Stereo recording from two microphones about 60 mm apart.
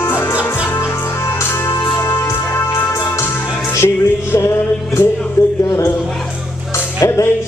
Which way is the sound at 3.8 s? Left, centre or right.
Left.